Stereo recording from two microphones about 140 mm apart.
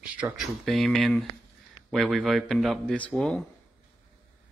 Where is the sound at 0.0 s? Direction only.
10° right (ahead or behind).